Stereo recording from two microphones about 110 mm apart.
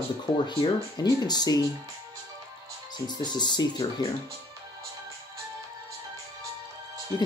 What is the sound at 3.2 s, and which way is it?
Speech, 40° left (ahead or behind).